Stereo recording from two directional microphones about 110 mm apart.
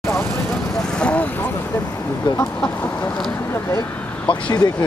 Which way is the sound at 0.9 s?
10° left (ahead or behind).